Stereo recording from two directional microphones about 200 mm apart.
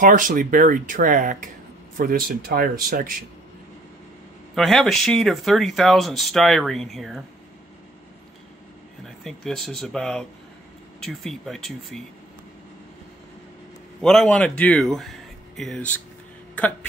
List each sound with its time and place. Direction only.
0.0 s speech: 40° right (ahead or behind)
4.6 s speech: centre (ahead or behind)
9.0 s speech: centre (ahead or behind)
14.0 s speech: centre (ahead or behind)